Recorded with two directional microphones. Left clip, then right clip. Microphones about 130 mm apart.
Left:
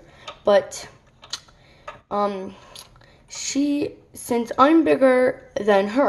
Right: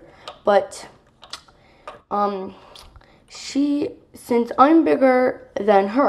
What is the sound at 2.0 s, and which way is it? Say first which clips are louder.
Speech: right 2 dB; 20° left (ahead or behind).